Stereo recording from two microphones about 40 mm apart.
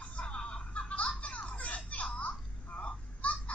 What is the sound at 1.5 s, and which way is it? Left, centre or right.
Children playing, left.